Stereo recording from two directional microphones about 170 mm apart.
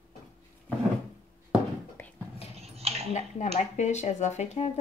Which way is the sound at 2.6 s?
35° right (ahead or behind).